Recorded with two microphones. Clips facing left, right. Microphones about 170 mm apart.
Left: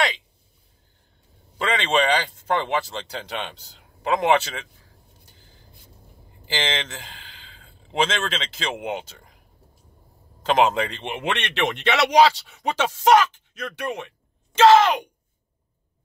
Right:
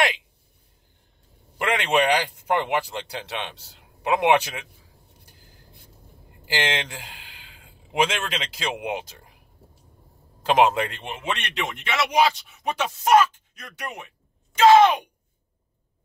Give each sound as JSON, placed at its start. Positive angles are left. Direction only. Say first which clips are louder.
{"t": 1.6, "sound": "speech", "louder": "even", "side_deg": -10}
{"t": 6.4, "sound": "a man's voice", "louder": "right 1 dB", "side_deg": -10}
{"t": 10.4, "sound": "speech", "louder": "even", "side_deg": -10}
{"t": 11.1, "sound": "speech", "louder": "left 5 dB", "side_deg": 80}